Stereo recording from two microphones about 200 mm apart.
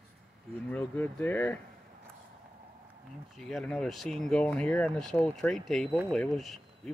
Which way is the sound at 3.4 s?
Centre (ahead or behind).